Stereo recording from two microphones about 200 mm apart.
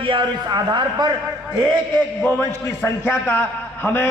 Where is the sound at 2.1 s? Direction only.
10° left (ahead or behind).